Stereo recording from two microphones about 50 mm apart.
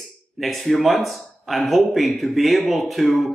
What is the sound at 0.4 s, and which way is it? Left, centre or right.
Speech, centre.